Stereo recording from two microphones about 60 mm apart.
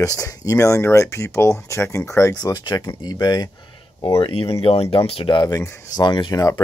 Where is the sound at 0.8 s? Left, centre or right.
Left.